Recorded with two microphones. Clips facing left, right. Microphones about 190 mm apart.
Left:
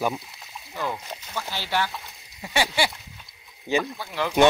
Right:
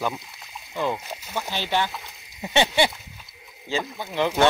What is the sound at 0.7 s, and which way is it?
Speech, 20° right (ahead or behind).